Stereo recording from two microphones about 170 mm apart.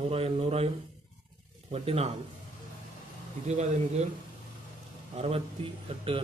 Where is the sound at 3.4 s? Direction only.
40° right (ahead or behind).